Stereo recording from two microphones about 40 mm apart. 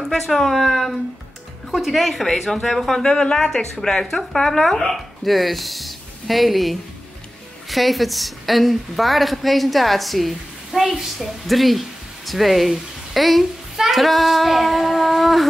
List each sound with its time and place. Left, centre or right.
0.0 s a woman's voice: centre